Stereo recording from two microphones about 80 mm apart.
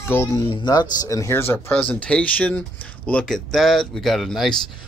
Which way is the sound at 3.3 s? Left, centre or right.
Centre.